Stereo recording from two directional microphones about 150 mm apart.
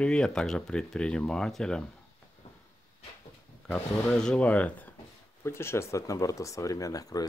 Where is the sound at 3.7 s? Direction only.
5° left (ahead or behind).